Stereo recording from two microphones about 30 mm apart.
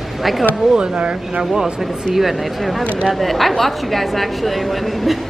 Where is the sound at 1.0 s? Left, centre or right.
Right.